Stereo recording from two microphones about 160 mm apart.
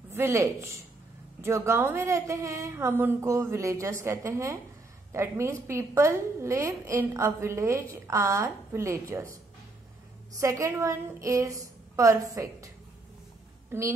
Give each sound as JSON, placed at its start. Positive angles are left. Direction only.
{"t": 0.1, "sound": "a woman's voice", "side_deg": -15}
{"t": 10.3, "sound": "a woman's voice", "side_deg": -20}